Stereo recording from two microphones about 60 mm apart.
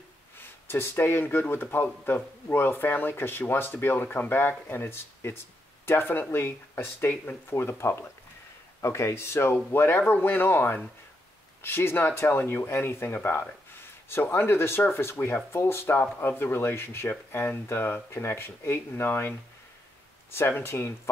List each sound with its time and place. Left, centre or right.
0.7 s a man's voice: left
8.8 s a man's voice: left
16.0 s a man's voice: left